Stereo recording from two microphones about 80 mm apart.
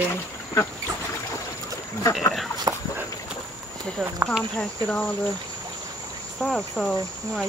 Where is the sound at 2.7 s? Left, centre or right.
Right.